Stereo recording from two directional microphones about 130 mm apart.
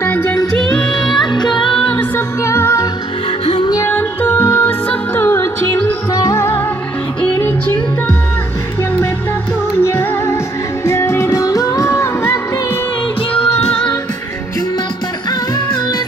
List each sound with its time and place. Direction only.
0.0 s music: 15° left (ahead or behind)
1.3 s music: 35° left (ahead or behind)
1.8 s music: 10° left (ahead or behind)
9.8 s music: 20° left (ahead or behind)